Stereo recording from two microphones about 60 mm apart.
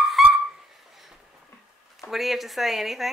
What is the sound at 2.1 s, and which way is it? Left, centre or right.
Speech, centre.